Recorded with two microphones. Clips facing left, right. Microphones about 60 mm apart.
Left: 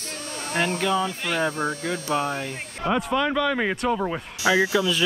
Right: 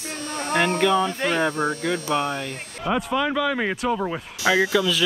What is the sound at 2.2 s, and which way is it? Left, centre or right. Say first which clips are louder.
Speech: even; centre.